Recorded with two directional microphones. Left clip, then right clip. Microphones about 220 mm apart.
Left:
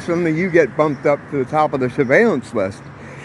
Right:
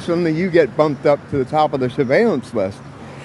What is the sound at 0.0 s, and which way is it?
Speech, 5° right (ahead or behind).